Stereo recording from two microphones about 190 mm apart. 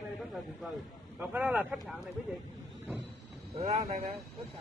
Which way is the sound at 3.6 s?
35° right (ahead or behind).